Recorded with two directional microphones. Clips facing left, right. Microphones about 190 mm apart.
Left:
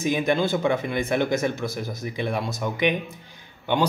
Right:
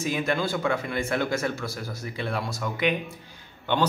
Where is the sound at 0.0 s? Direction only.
20° left (ahead or behind).